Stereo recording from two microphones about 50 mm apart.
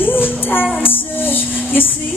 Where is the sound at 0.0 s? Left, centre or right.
Left.